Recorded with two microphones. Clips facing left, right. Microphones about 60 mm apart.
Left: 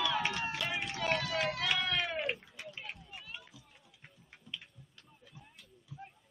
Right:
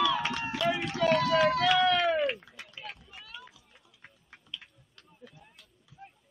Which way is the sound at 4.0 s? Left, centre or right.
Right.